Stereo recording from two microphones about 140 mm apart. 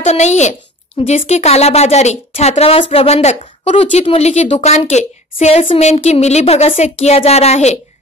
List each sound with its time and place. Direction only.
0.0 s a woman's voice: 55° left (ahead or behind)